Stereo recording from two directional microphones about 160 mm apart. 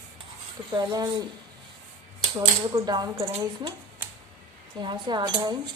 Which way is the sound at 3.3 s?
35° right (ahead or behind).